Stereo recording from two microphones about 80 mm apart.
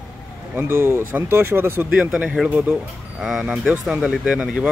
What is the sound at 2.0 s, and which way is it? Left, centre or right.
Speech, centre.